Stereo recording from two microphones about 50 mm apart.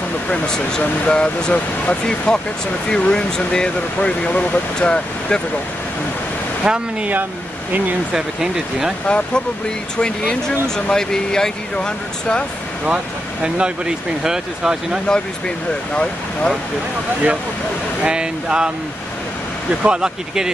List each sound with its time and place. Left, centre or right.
0.3 s speech: centre
4.3 s speech: left
4.7 s speech: centre
6.6 s speech: centre
8.1 s speech: centre
9.0 s speech: centre
12.8 s speech: right
15.0 s speech: centre
18.0 s speech: centre
19.8 s speech: centre